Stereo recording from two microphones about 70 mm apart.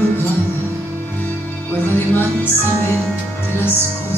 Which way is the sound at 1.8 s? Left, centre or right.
Left.